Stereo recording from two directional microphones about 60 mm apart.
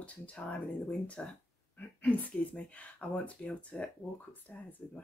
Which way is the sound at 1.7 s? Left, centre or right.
Left.